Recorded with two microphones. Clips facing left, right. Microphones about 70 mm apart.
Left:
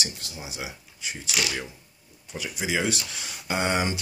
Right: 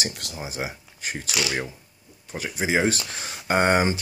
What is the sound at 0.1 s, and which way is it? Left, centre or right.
Speech, right.